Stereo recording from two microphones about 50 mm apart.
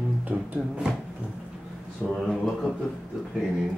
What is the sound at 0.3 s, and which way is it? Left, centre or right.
Music, right.